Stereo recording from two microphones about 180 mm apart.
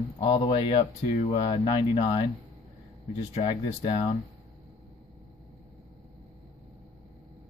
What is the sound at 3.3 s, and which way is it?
Speech, 30° left (ahead or behind).